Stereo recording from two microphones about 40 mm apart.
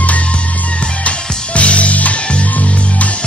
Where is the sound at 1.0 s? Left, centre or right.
Left.